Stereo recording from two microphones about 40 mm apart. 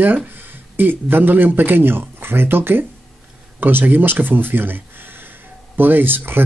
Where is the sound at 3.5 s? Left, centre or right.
Right.